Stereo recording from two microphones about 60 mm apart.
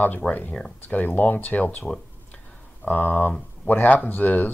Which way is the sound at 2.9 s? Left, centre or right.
Left.